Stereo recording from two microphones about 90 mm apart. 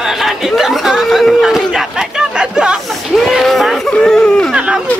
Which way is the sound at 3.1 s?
Centre (ahead or behind).